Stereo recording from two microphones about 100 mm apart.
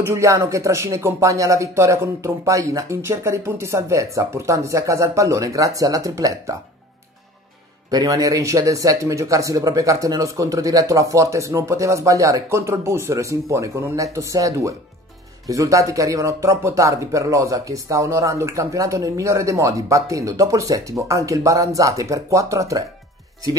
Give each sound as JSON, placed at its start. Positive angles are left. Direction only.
{"t": 0.0, "sound": "speech", "side_deg": -30}
{"t": 7.9, "sound": "speech", "side_deg": -35}